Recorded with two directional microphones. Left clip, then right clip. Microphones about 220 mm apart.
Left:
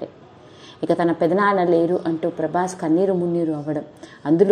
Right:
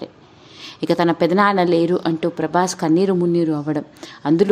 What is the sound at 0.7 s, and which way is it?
A woman's voice, 15° right (ahead or behind).